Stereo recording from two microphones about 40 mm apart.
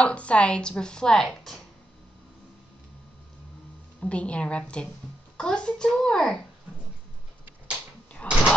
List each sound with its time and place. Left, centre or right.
0.0 s speech: left; by 1.6 s centre
4.0 s speech: left
8.3 s a sound: left